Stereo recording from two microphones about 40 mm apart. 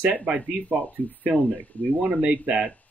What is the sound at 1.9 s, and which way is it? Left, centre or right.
Speech, right.